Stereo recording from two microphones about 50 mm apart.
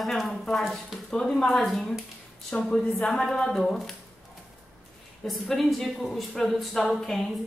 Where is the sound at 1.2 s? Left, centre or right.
Centre.